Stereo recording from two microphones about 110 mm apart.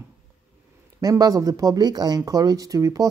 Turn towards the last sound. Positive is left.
turn(degrees=-30)  # may be behind; listen again after turning